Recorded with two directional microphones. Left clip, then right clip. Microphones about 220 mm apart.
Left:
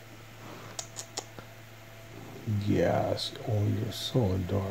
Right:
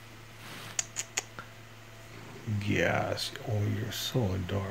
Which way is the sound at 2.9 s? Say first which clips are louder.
Left 2 dB; centre (ahead or behind).